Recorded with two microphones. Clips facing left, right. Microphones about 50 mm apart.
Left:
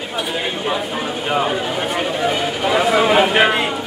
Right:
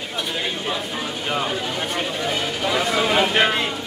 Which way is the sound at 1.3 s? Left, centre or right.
Centre.